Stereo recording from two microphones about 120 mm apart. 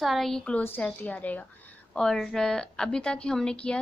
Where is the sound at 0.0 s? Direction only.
Centre (ahead or behind).